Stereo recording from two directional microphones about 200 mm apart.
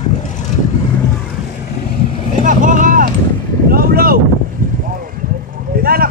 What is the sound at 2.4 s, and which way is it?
Vehicle, 40° right (ahead or behind).